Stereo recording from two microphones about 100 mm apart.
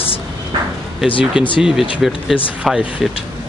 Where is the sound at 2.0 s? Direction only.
Centre (ahead or behind).